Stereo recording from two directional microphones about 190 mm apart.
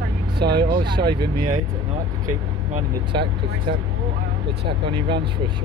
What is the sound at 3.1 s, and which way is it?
Speech, 25° right (ahead or behind).